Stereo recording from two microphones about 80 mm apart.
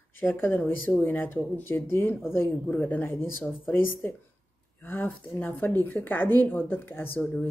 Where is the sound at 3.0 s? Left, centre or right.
Left.